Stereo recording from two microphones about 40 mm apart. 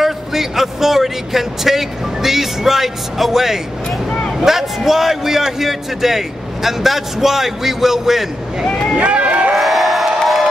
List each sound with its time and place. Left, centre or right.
0.0 s a man's voice: centre
8.9 s run: right
9.6 s crowd: centre